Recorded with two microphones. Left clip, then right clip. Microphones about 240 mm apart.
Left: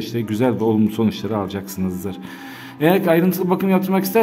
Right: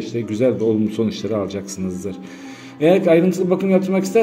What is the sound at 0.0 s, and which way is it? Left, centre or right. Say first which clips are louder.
Speech: right 2 dB; left.